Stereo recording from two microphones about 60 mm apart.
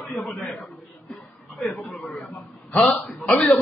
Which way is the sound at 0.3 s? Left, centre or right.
Left.